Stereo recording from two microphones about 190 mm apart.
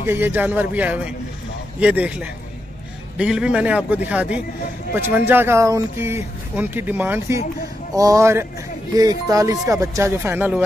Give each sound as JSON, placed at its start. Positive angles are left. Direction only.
{"t": 0.0, "sound": "speech", "side_deg": -10}